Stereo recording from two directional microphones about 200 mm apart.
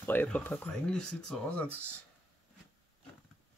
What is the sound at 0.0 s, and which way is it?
Speech, 10° left (ahead or behind).